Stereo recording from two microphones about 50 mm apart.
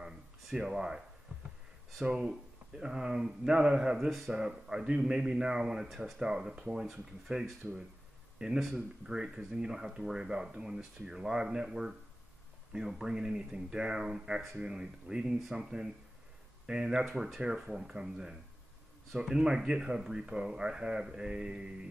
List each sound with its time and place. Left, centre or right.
0.5 s speech: centre
2.1 s speech: centre
8.5 s speech: centre
19.1 s speech: centre